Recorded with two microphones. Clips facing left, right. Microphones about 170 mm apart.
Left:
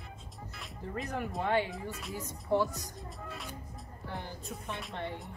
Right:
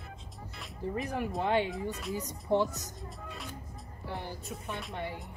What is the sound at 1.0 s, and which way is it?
Speech, 10° right (ahead or behind).